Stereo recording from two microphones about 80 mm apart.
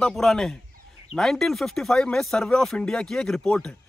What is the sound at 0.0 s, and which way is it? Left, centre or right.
Speech, centre.